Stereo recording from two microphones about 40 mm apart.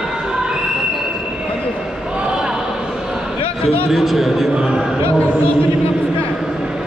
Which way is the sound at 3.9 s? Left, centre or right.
Centre.